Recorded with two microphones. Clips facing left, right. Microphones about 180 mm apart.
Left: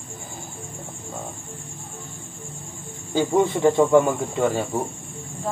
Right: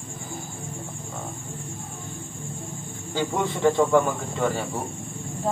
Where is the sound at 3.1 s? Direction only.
20° left (ahead or behind).